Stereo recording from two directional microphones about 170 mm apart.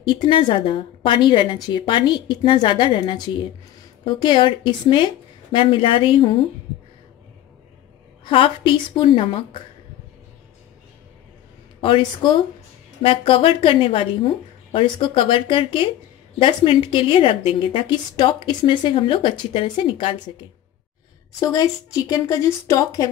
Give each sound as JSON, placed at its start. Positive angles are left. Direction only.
{"t": 0.0, "sound": "a woman's voice", "side_deg": 30}
{"t": 8.3, "sound": "a woman's voice", "side_deg": 30}
{"t": 11.8, "sound": "a woman's voice", "side_deg": 30}
{"t": 21.4, "sound": "a woman's voice", "side_deg": 20}